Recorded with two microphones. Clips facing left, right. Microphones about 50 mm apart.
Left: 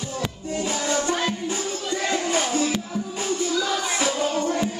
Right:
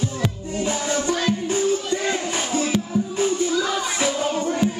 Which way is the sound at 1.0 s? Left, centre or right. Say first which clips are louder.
Right 2 dB; centre.